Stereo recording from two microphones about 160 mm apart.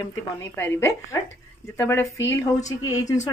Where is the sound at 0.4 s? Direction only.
15° left (ahead or behind).